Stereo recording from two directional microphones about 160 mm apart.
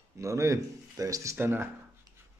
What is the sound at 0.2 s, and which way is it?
Speech, 20° right (ahead or behind).